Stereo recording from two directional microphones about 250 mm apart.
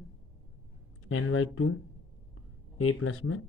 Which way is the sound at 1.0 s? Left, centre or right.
Left.